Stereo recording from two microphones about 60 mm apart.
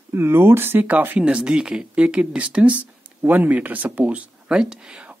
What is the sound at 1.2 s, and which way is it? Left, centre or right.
Speech, centre.